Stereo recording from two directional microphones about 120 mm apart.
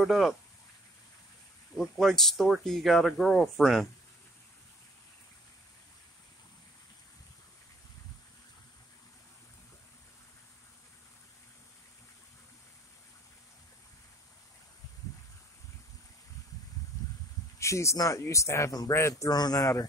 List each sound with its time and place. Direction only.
0.0 s speech: centre (ahead or behind)
1.8 s speech: centre (ahead or behind)
17.6 s speech: 25° left (ahead or behind)